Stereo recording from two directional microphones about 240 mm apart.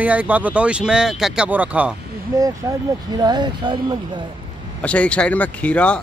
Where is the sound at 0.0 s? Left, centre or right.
Centre.